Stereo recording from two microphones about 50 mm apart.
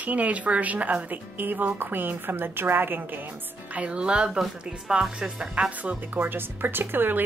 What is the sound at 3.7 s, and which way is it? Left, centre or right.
A woman's voice, right.